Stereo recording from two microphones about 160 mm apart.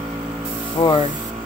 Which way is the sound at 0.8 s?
30° left (ahead or behind).